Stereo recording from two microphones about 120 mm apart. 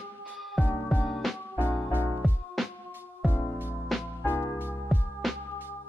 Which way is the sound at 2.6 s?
Centre (ahead or behind).